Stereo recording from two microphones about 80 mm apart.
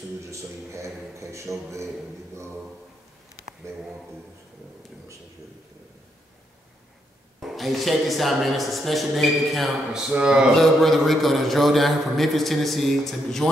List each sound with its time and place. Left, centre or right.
0.2 s a man's voice: right
7.3 s a man's voice: centre
10.5 s a man's voice: centre